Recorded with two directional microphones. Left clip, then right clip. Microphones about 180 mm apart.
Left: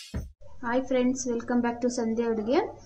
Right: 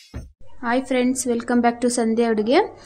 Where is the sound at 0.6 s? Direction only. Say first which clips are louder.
Right 5 dB; 50° right (ahead or behind).